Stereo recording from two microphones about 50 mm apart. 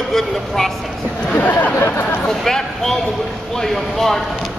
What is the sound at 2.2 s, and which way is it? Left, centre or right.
A man's voice, centre.